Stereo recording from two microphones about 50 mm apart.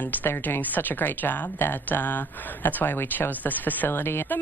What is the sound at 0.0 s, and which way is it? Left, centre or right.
Speech, left.